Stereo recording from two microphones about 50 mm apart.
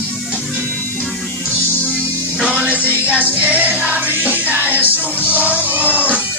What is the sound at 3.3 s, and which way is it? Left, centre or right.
Music, right.